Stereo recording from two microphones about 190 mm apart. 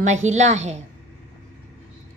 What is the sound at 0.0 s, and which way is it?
Speech, 35° right (ahead or behind).